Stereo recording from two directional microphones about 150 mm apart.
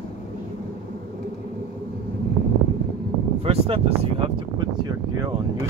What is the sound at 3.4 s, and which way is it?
Speech, 40° right (ahead or behind).